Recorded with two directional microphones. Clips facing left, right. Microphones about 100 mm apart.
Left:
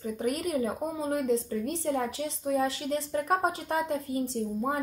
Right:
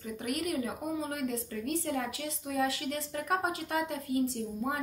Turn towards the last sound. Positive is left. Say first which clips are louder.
# left 2 dB
turn(degrees=30)  # may be behind; listen again after turning